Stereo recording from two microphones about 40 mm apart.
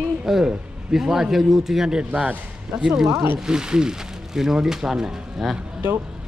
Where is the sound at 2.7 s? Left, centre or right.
Centre.